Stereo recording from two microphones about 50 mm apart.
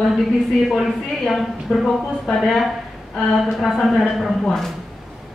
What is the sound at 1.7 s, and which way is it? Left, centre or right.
Speech, centre.